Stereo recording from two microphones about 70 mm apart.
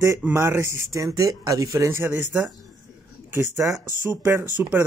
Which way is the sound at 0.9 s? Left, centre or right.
Right.